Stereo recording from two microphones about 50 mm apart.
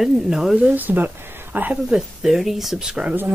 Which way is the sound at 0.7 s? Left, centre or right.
Right.